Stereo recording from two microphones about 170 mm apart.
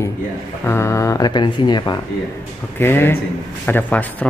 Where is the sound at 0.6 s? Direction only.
15° left (ahead or behind).